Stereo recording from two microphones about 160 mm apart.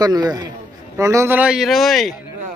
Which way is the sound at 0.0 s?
25° right (ahead or behind).